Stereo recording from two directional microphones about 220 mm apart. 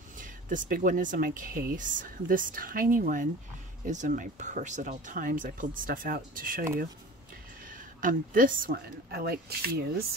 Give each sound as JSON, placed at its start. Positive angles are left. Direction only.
{"t": 0.2, "sound": "speech", "side_deg": -35}